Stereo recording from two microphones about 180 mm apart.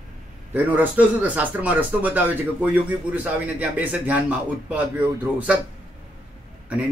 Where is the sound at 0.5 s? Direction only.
10° right (ahead or behind).